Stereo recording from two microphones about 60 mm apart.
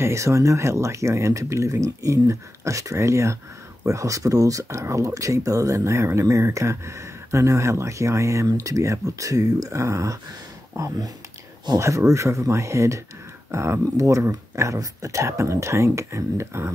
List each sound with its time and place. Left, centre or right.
0.0 s speech: right